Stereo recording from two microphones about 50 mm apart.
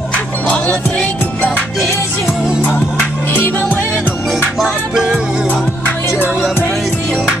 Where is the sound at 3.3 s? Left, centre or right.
Left.